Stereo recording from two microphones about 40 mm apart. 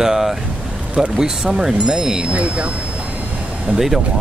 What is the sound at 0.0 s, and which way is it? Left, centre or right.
Vehicle, centre.